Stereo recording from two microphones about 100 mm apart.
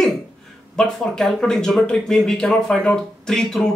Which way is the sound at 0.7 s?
5° left (ahead or behind).